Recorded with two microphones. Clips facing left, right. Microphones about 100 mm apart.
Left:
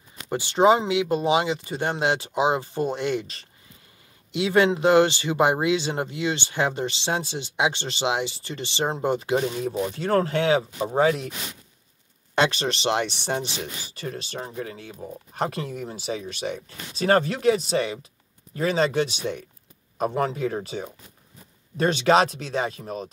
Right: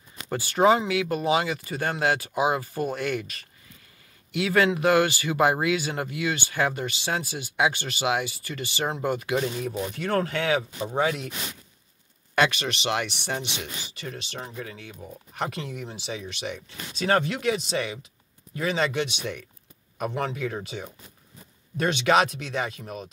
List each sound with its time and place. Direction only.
0.3 s speech: 20° left (ahead or behind)
12.4 s speech: 30° left (ahead or behind)